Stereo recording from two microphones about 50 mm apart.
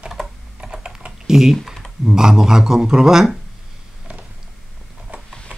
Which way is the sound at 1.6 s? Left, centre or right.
Centre.